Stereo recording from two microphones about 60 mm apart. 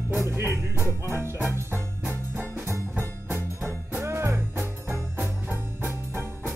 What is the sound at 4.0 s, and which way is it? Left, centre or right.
Music, right.